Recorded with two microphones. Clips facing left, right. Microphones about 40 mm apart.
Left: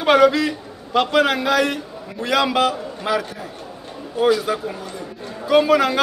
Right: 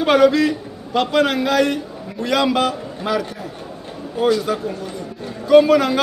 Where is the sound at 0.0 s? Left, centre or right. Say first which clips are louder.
Right 1 dB; centre.